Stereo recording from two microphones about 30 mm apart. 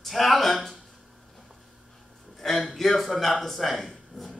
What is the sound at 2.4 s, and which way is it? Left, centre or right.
A man's voice, centre.